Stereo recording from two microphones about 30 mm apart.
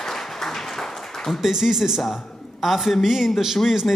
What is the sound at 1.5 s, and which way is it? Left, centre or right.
A man's voice, centre.